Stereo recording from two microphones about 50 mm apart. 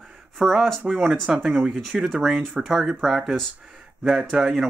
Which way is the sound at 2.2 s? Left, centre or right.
Centre.